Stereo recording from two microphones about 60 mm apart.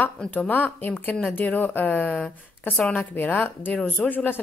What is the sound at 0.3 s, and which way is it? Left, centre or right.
A woman's voice, left.